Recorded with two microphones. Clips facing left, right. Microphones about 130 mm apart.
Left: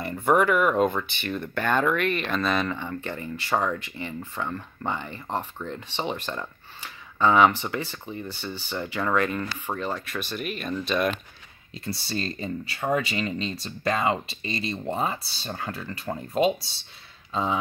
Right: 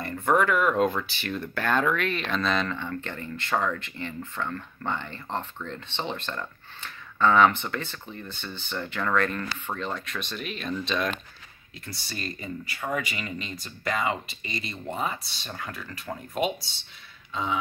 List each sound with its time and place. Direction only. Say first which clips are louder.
0.0 s speech: left 2 dB; 10° left (ahead or behind)
11.8 s speech: left 6 dB; 25° left (ahead or behind)